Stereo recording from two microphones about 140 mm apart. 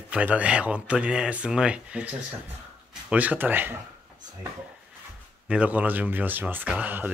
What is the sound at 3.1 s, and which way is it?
Speech, 10° right (ahead or behind).